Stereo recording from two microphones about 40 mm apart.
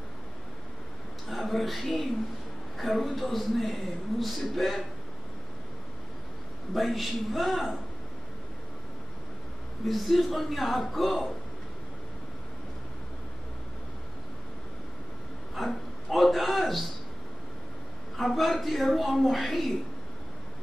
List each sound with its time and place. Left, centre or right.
1.3 s speech: centre
6.7 s speech: centre
9.8 s speech: centre
15.5 s a sound: centre
18.1 s speech: centre